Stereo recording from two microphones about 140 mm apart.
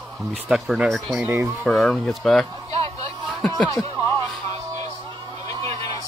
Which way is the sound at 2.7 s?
45° right (ahead or behind).